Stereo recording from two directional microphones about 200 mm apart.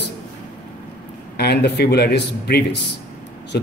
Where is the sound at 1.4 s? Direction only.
55° left (ahead or behind).